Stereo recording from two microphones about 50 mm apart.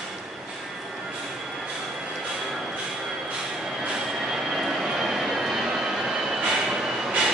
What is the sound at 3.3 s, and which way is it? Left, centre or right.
Train, centre.